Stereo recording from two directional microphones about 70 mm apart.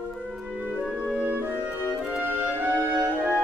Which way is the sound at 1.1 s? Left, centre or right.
Right.